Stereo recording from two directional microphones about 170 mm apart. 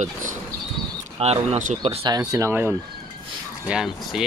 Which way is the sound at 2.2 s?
20° right (ahead or behind).